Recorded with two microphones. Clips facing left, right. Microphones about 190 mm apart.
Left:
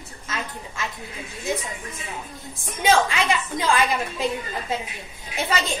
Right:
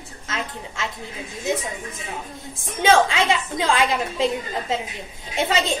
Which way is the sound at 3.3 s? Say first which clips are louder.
Right 1 dB; 25° right (ahead or behind).